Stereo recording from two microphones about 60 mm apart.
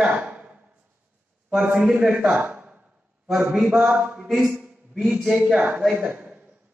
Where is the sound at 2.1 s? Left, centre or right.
Centre.